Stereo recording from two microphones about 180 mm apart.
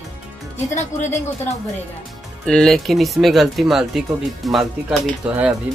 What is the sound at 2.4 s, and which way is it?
Speech, 5° left (ahead or behind).